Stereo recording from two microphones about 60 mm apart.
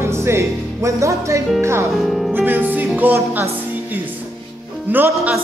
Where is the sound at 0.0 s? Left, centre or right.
Right.